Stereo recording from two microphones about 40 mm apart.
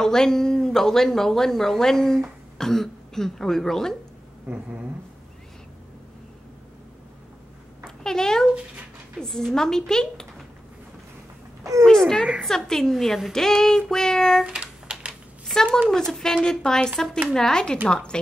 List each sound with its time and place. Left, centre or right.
0.0 s speech: centre
4.5 s speech: right
7.8 s a sound: centre
9.2 s speech: centre
12.4 s speech: centre
14.4 s typing: right
15.4 s speech: centre